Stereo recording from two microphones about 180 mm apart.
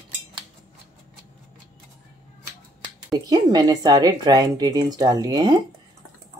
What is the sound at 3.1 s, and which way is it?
Speech, 20° right (ahead or behind).